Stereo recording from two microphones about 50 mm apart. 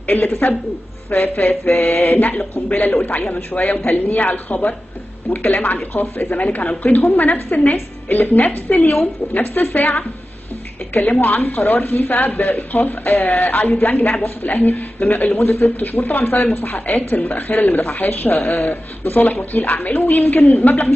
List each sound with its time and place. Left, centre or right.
0.0 s a woman's voice: left